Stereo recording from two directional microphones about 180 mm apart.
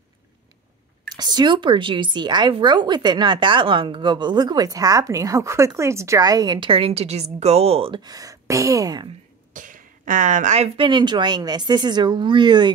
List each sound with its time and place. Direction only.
1.1 s speech: 25° right (ahead or behind)
9.5 s speech: 45° right (ahead or behind); by 12.7 s 25° right (ahead or behind)